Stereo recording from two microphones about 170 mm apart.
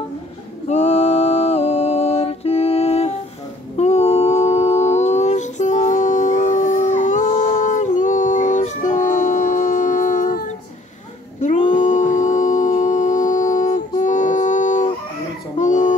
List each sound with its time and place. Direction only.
0.7 s music: 40° left (ahead or behind)
3.7 s humming: 40° left (ahead or behind)
11.4 s a sound: 45° left (ahead or behind)
15.5 s baby cry: 45° left (ahead or behind)